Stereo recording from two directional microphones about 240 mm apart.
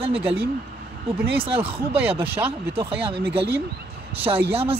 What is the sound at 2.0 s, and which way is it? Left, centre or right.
Speech, centre.